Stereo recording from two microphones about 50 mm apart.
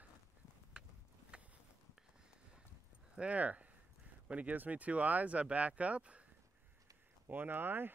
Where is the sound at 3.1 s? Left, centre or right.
Right.